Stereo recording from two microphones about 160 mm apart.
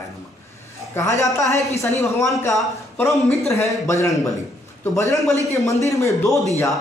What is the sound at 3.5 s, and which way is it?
A man's voice, 20° left (ahead or behind).